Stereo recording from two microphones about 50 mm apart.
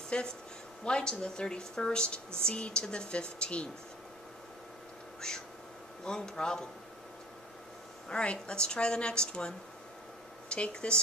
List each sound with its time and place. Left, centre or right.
0.1 s a woman's voice: left
5.2 s a woman's voice: centre
8.1 s a woman's voice: centre
10.5 s speech: centre